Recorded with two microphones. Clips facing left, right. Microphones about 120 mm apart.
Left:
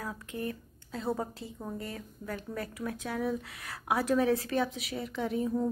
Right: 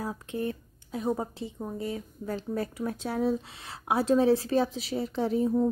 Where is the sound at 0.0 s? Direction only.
25° right (ahead or behind).